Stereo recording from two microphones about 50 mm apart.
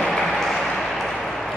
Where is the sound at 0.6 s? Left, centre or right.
Centre.